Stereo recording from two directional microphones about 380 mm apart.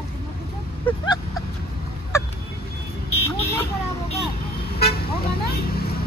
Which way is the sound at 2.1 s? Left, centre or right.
Centre.